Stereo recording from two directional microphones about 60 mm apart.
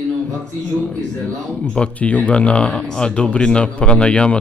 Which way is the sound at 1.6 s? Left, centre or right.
Centre.